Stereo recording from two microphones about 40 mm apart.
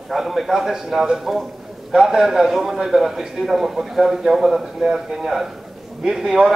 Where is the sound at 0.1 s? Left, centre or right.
Centre.